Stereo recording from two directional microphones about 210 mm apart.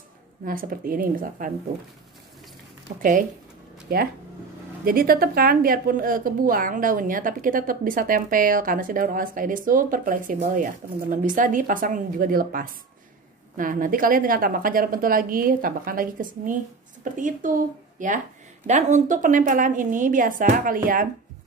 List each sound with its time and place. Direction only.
0.5 s speech: 45° right (ahead or behind)
3.0 s a woman's voice: 40° right (ahead or behind)